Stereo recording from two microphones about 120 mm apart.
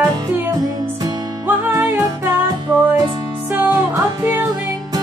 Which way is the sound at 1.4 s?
15° right (ahead or behind).